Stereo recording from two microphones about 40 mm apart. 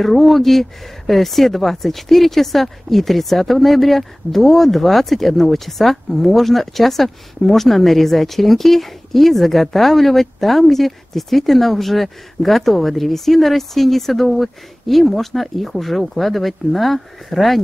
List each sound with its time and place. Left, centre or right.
0.0 s speech: centre